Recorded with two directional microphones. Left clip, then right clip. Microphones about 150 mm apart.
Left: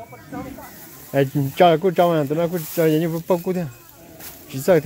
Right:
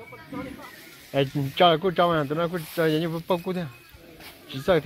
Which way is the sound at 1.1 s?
35° left (ahead or behind).